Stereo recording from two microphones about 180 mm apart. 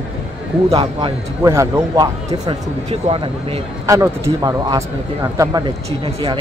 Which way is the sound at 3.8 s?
15° right (ahead or behind).